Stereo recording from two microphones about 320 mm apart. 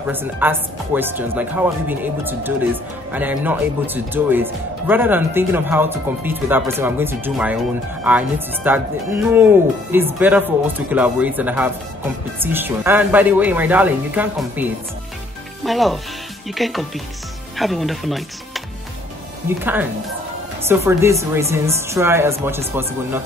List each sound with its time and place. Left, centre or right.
0.1 s a woman's voice: centre
19.6 s a woman's voice: centre